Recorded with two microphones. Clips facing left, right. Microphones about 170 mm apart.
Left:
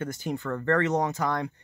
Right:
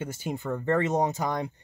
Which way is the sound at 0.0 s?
20° right (ahead or behind).